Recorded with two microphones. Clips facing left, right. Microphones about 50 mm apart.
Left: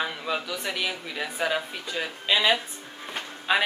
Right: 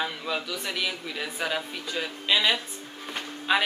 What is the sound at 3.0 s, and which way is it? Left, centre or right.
Music, centre.